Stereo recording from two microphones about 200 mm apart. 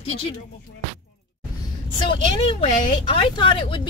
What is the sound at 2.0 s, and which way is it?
A woman's voice, 25° left (ahead or behind).